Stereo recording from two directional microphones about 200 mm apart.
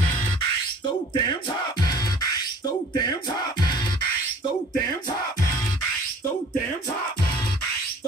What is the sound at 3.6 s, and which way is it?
Music, 20° left (ahead or behind).